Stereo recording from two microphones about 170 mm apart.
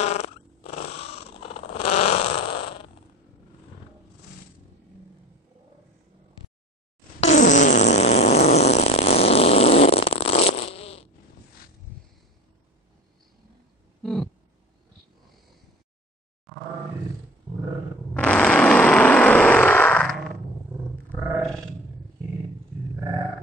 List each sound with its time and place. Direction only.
0.0 s cat: 40° left (ahead or behind)
7.2 s fart: 45° left (ahead or behind)
14.0 s a sound: 5° left (ahead or behind)
16.5 s roar: centre (ahead or behind)
18.1 s vehicle: 5° left (ahead or behind)